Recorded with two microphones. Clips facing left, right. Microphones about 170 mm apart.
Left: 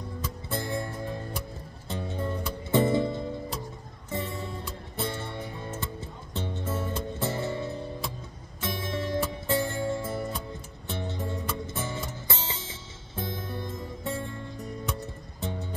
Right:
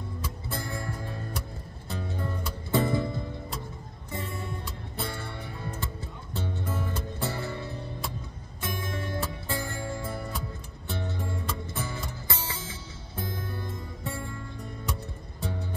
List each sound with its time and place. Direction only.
0.5 s music: 20° left (ahead or behind)